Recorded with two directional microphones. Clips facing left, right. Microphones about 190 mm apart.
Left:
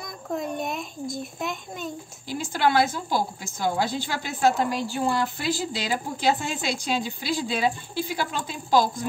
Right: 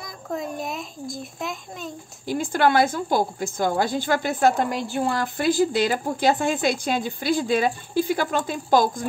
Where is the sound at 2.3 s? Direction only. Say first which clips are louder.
Right 3 dB; 50° right (ahead or behind).